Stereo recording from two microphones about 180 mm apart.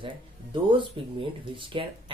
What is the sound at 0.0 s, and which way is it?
Speech, 30° right (ahead or behind).